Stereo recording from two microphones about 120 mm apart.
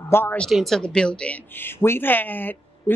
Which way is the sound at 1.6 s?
20° left (ahead or behind).